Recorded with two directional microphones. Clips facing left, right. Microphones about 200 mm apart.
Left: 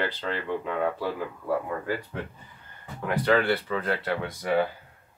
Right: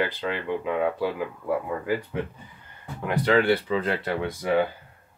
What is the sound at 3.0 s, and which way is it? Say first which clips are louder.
Speech: right 2 dB; 15° right (ahead or behind).